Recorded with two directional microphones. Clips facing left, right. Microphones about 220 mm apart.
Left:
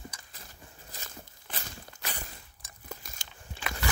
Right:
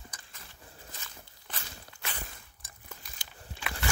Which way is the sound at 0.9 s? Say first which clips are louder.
Left 3 dB; 35° left (ahead or behind).